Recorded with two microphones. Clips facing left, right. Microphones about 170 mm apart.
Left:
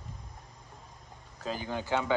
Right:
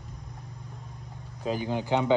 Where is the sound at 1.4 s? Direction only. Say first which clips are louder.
Right 6 dB; 15° right (ahead or behind).